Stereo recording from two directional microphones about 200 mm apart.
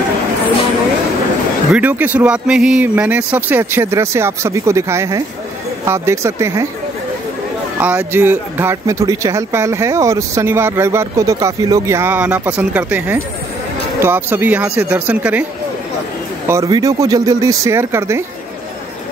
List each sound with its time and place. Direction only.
1.7 s speech: 5° right (ahead or behind)
7.8 s speech: 10° right (ahead or behind)
16.4 s speech: 15° right (ahead or behind)